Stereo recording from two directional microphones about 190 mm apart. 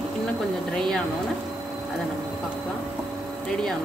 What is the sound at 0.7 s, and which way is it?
Speech, 5° left (ahead or behind).